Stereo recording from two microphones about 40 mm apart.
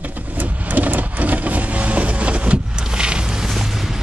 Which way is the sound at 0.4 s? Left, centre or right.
Right.